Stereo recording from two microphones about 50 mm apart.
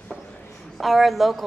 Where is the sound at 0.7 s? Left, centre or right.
Centre.